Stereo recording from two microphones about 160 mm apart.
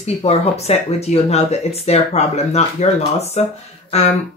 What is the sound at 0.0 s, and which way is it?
Speech, 40° left (ahead or behind).